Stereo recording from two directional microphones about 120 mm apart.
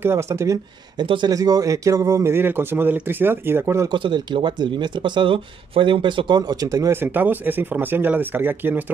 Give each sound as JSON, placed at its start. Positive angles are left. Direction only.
{"t": 0.0, "sound": "speech", "side_deg": -20}
{"t": 0.9, "sound": "speech", "side_deg": -40}
{"t": 3.9, "sound": "speech", "side_deg": -40}